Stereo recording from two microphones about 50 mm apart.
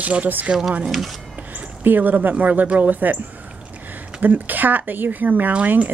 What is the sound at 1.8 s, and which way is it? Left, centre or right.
Speech, right.